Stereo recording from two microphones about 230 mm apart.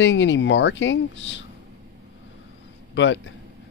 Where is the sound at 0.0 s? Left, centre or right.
Left.